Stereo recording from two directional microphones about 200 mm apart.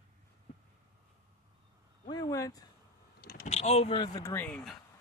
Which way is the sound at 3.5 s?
30° left (ahead or behind).